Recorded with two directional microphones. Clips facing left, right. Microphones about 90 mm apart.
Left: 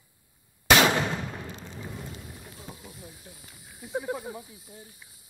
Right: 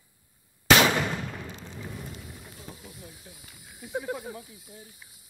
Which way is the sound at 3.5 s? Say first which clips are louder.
Even; centre (ahead or behind).